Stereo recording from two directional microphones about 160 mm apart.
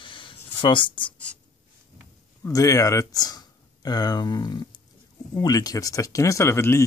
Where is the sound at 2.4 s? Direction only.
20° left (ahead or behind).